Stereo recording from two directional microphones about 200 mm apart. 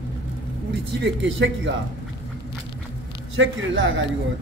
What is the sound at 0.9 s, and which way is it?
Speech, 60° right (ahead or behind).